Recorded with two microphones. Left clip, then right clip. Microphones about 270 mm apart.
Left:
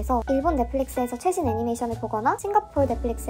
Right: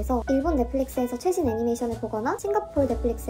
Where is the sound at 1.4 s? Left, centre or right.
Left.